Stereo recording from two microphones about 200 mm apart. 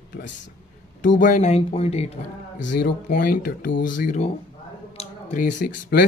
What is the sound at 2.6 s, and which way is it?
Speech, 65° left (ahead or behind).